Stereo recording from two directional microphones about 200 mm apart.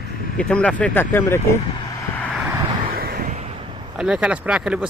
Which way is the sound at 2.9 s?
45° right (ahead or behind).